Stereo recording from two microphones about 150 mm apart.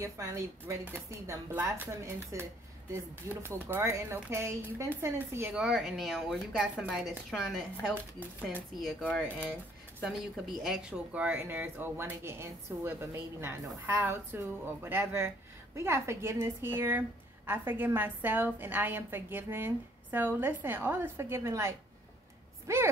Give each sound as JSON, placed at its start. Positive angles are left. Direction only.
{"t": 0.0, "sound": "speech", "side_deg": -20}
{"t": 5.5, "sound": "a woman's voice", "side_deg": -5}